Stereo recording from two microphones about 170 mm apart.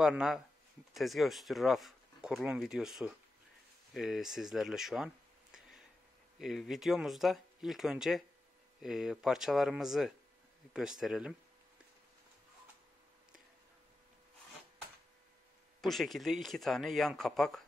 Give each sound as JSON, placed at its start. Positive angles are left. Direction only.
{"t": 0.0, "sound": "speech", "side_deg": -5}
{"t": 15.8, "sound": "speech", "side_deg": 0}